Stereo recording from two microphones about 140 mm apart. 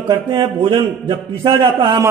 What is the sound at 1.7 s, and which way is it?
Speech, 35° right (ahead or behind).